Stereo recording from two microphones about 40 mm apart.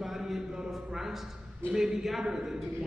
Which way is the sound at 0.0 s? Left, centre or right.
Centre.